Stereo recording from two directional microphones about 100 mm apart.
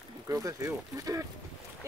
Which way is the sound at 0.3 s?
35° right (ahead or behind).